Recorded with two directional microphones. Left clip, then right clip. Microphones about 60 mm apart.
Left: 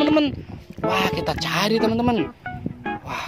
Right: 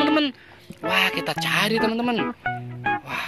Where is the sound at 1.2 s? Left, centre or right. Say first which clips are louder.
Even; left.